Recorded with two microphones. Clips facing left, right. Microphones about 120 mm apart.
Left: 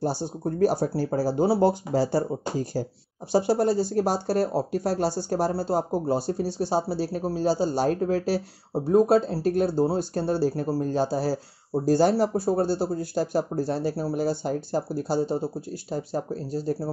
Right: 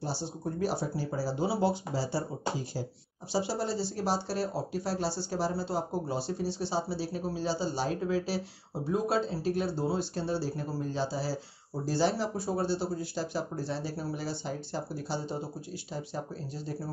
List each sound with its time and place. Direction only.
0.0 s speech: 45° left (ahead or behind)